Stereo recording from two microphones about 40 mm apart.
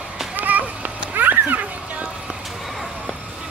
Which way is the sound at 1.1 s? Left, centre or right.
Right.